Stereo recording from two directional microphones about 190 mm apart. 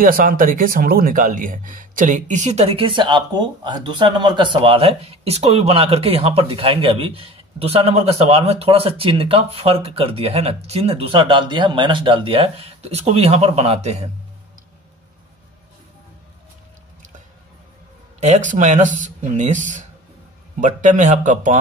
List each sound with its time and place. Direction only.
0.0 s speech: 50° right (ahead or behind)
18.2 s speech: 40° right (ahead or behind)